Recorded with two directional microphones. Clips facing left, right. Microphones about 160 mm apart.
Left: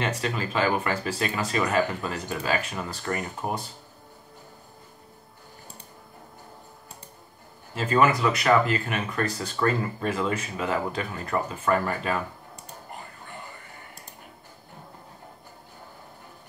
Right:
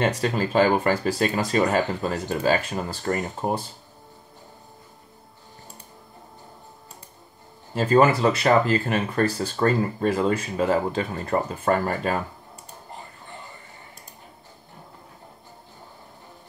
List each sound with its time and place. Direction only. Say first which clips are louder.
0.0 s speech: right 5 dB; 35° right (ahead or behind)
7.7 s speech: right 4 dB; 35° right (ahead or behind)